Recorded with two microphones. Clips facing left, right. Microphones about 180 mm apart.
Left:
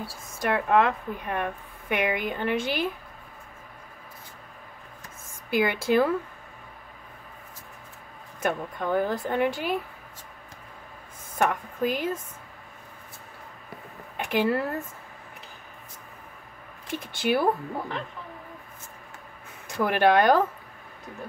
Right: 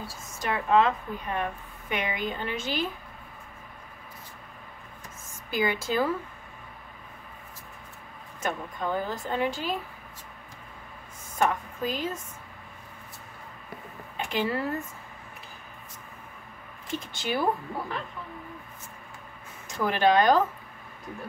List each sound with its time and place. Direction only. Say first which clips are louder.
0.0 s speech: left 4 dB; 60° left (ahead or behind)
5.5 s speech: left 4 dB; 60° left (ahead or behind)
8.4 s speech: left 3 dB; 55° left (ahead or behind)
11.3 s speech: left 1 dB; 60° left (ahead or behind)
14.1 s speech: left 4 dB; 60° left (ahead or behind)
16.9 s speech: left 5 dB; 55° left (ahead or behind)
19.8 s speech: left 2 dB; 60° left (ahead or behind)